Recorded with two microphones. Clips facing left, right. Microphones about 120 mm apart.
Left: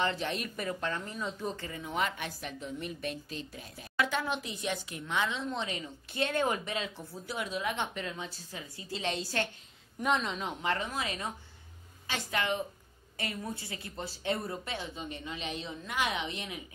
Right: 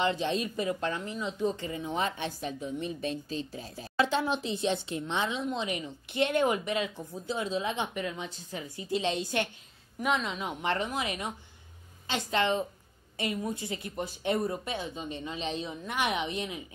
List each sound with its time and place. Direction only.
0.0 s a woman's voice: 20° right (ahead or behind)
9.9 s a woman's voice: centre (ahead or behind)
10.6 s a woman's voice: 25° right (ahead or behind)